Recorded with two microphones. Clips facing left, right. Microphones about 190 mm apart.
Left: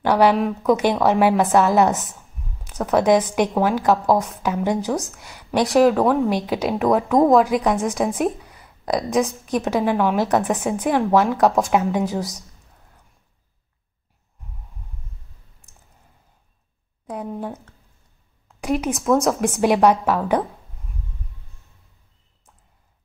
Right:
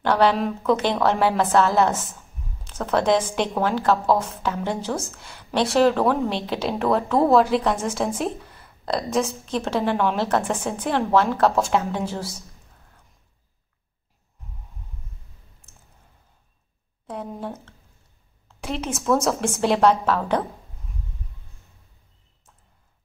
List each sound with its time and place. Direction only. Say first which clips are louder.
0.0 s a woman's voice: left 3 dB; 10° left (ahead or behind)
7.7 s a woman's voice: left 4 dB; centre (ahead or behind)
8.4 s a sound: right 1 dB; centre (ahead or behind)
8.8 s speech: left 3 dB; 15° left (ahead or behind)
17.1 s a woman's voice: left 3 dB; centre (ahead or behind)
18.6 s speech: left 6 dB; 15° left (ahead or behind)
19.2 s a woman's voice: left 3 dB; centre (ahead or behind)
19.6 s speech: left 2 dB; 10° left (ahead or behind)